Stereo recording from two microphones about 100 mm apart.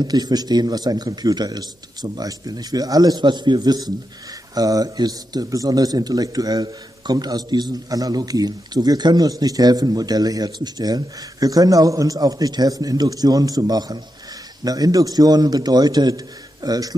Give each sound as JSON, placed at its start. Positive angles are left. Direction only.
{"t": 0.0, "sound": "a man's voice", "side_deg": -45}